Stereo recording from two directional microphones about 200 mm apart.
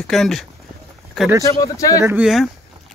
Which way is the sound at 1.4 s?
15° left (ahead or behind).